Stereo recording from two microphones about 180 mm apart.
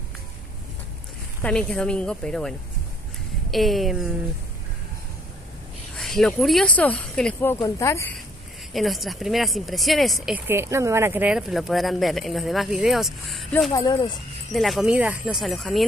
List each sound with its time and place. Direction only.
1.4 s speech: 5° left (ahead or behind)
3.5 s speech: centre (ahead or behind)
5.9 s speech: centre (ahead or behind)
8.7 s speech: centre (ahead or behind)
13.7 s speech: 25° left (ahead or behind)
14.5 s speech: centre (ahead or behind)